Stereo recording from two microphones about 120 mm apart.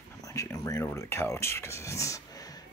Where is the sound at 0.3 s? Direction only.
25° left (ahead or behind).